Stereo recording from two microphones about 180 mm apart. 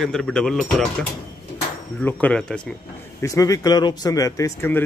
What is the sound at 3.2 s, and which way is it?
Speech, 20° left (ahead or behind).